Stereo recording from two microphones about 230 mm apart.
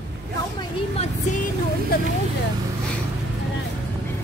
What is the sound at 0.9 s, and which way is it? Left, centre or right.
Vehicle, left.